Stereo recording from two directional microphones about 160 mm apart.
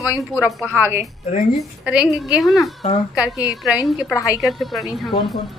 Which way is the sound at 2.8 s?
35° left (ahead or behind).